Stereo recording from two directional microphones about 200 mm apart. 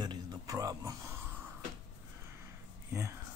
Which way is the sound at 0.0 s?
20° right (ahead or behind).